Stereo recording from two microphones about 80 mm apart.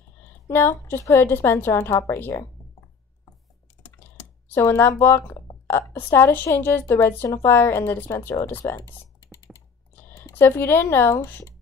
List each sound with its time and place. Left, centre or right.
0.5 s a woman's voice: left
3.8 s speech: left
9.9 s speech: left